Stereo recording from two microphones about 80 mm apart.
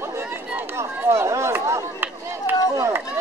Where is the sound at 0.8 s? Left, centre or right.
Right.